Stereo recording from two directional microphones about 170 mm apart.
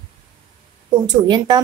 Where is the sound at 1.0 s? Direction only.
25° right (ahead or behind).